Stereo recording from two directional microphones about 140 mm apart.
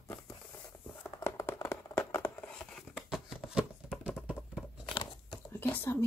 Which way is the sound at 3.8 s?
5° right (ahead or behind).